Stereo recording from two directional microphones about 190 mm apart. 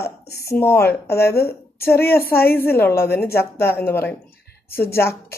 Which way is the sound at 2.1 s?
55° left (ahead or behind).